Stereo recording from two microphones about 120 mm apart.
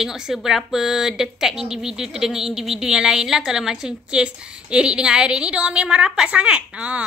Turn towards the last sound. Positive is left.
turn(degrees=-10)  # may be behind; listen again after turning